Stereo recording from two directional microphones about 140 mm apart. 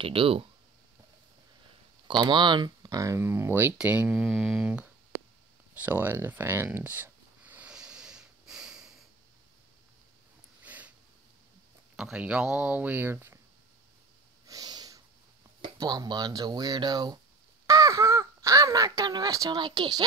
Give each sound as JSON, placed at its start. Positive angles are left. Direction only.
{"t": 0.0, "sound": "speech", "side_deg": -40}
{"t": 2.0, "sound": "speech", "side_deg": -35}
{"t": 5.8, "sound": "a sound", "side_deg": -15}
{"t": 10.6, "sound": "snort", "side_deg": -10}
{"t": 12.0, "sound": "speech", "side_deg": -5}
{"t": 14.4, "sound": "snort", "side_deg": -25}
{"t": 15.6, "sound": "speech", "side_deg": -30}